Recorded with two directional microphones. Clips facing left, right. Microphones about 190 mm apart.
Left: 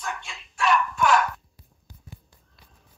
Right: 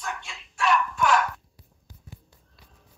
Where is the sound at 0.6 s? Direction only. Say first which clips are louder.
Left 1 dB; 90° left.